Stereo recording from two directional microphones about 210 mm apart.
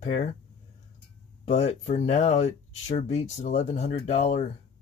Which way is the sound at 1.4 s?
30° left (ahead or behind).